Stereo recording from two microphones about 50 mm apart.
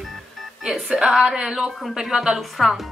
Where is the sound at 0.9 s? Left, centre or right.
Centre.